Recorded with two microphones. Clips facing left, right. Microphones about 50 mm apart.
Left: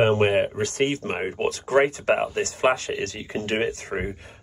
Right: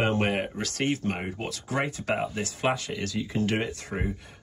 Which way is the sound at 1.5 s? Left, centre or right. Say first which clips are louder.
Left 10 dB; left.